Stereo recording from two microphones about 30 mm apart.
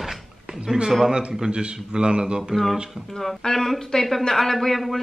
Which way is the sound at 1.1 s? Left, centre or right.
Right.